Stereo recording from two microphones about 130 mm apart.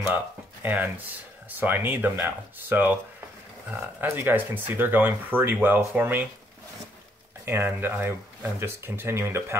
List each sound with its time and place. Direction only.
0.0 s speech: 15° right (ahead or behind)
4.0 s speech: 15° right (ahead or behind)
7.4 s speech: 15° right (ahead or behind)